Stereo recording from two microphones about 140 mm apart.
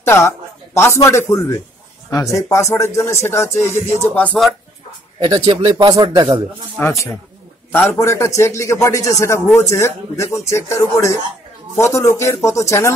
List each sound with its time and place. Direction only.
0.0 s a woman's voice: 15° left (ahead or behind)
5.3 s speech: 30° right (ahead or behind)
6.8 s speech: 20° left (ahead or behind)